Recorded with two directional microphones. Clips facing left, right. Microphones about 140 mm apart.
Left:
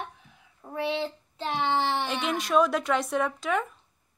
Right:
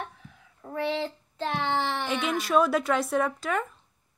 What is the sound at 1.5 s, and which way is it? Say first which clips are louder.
Speech: left 2 dB; 25° left (ahead or behind).